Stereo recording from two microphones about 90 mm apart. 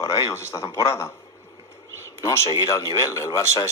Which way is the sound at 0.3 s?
30° left (ahead or behind).